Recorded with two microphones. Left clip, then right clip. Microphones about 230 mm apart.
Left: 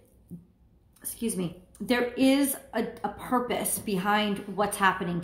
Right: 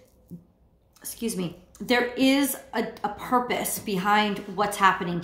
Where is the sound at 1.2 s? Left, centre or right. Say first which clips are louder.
Right 1 dB; centre.